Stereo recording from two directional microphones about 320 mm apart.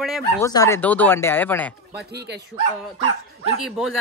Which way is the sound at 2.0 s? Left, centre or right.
Right.